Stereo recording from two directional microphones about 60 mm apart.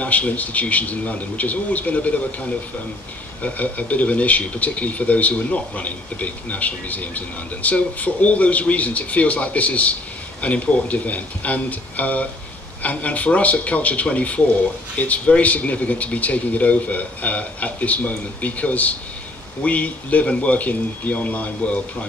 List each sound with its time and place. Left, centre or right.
0.0 s speech: left
3.4 s speech: left